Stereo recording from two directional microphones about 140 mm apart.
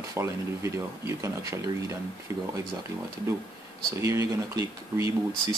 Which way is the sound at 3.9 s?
25° right (ahead or behind).